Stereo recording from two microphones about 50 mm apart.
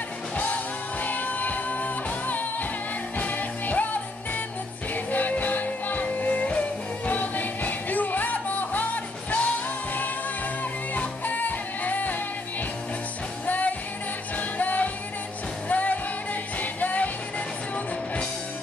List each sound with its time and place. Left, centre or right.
1.0 s music: left
4.9 s music: left
11.0 s music: left
13.5 s music: left